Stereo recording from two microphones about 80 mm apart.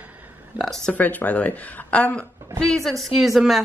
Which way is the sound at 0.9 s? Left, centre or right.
Centre.